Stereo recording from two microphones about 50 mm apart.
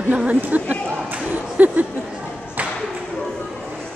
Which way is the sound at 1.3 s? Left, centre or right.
Right.